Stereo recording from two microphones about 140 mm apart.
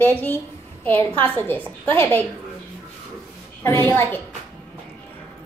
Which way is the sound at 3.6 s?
15° left (ahead or behind).